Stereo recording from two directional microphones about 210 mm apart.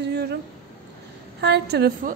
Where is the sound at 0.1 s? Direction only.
50° right (ahead or behind).